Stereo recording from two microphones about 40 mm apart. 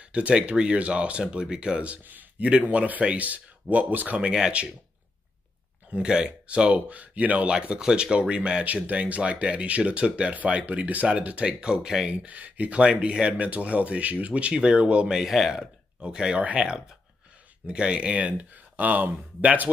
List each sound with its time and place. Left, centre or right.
0.0 s speech: right
2.4 s speech: right
6.0 s speech: right
7.5 s speech: right
8.8 s speech: right
10.3 s speech: right
11.2 s speech: right
12.3 s speech: right
14.5 s speech: right
15.2 s speech: centre
16.0 s speech: right